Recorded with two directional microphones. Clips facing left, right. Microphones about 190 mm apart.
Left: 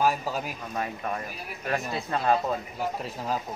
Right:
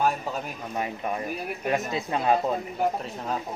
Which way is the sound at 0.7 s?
15° right (ahead or behind).